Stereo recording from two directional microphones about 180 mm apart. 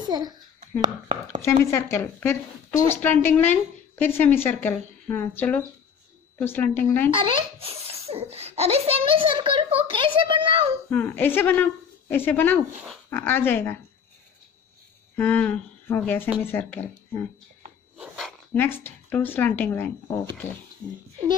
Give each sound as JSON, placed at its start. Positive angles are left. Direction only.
{"t": 0.0, "sound": "a child's voice", "side_deg": -25}
{"t": 1.4, "sound": "a woman's voice", "side_deg": 15}
{"t": 7.1, "sound": "a child's voice", "side_deg": -30}
{"t": 10.9, "sound": "a woman's voice", "side_deg": 10}
{"t": 15.1, "sound": "a woman's voice", "side_deg": 10}
{"t": 17.9, "sound": "dog", "side_deg": 0}
{"t": 18.6, "sound": "a woman's voice", "side_deg": 10}